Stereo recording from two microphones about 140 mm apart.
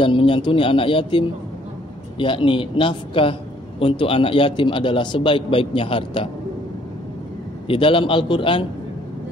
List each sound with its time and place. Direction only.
0.0 s a man's voice: 40° left (ahead or behind)
7.6 s a man's voice: 40° left (ahead or behind)